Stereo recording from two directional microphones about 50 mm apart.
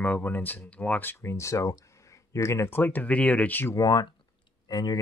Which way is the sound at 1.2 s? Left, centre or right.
Left.